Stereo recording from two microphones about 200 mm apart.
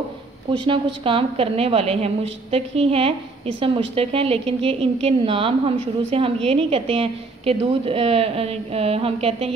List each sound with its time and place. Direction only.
0.5 s a woman's voice: 25° right (ahead or behind)